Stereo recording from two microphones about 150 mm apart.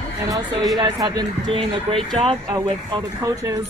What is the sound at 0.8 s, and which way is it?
Speech, 30° right (ahead or behind).